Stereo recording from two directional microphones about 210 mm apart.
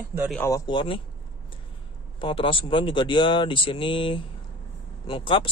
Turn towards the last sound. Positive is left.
turn(degrees=25)  # may be behind; listen again after turning